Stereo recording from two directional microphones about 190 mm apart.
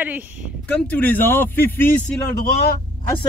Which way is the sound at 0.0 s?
10° right (ahead or behind).